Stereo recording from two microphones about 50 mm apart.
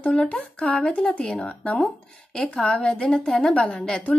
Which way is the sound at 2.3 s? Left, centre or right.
Centre.